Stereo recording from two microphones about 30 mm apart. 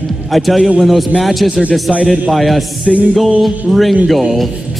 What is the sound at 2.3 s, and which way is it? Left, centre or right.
Speech, centre.